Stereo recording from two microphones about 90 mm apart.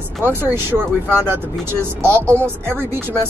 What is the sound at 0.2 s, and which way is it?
A woman's voice, 25° right (ahead or behind).